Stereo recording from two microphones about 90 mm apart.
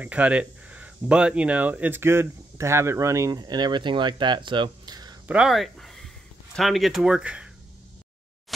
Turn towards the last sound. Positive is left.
turn(degrees=-10)  # may be behind; listen again after turning